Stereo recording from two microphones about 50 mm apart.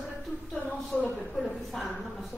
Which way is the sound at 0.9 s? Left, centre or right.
Left.